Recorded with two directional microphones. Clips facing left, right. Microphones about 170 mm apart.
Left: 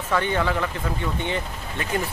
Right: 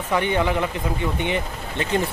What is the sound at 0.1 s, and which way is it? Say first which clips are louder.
Speech: right 2 dB; 20° right (ahead or behind).